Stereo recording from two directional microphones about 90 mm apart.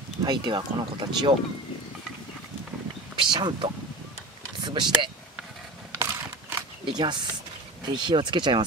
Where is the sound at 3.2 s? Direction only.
60° right (ahead or behind).